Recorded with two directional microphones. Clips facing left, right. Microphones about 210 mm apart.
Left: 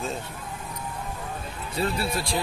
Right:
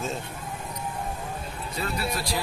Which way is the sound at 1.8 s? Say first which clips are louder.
Left 3 dB; 30° left (ahead or behind).